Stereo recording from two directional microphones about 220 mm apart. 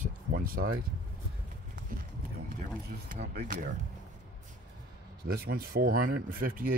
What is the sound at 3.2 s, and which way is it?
Speech, 50° right (ahead or behind).